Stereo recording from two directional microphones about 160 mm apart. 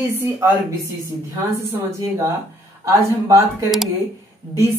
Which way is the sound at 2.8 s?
20° right (ahead or behind).